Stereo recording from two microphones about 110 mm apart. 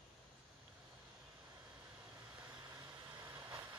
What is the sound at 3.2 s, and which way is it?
Vehicle, 20° right (ahead or behind).